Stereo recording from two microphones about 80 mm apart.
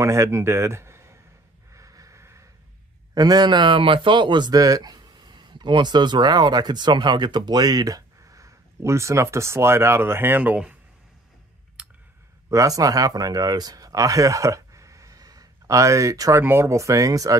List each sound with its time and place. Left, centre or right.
0.0 s speech: right
1.7 s a sound: right
3.2 s speech: right
4.6 s speech: right; by 10.8 s centre
11.8 s clicking: centre
12.4 s speech: right
16.3 s speech: right